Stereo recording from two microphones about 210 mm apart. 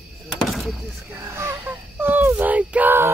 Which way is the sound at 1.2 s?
10° right (ahead or behind).